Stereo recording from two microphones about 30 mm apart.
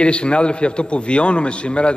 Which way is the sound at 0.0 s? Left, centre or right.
Left.